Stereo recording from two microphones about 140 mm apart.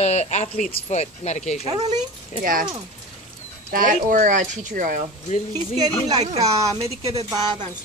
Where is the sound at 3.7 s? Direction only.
70° right (ahead or behind).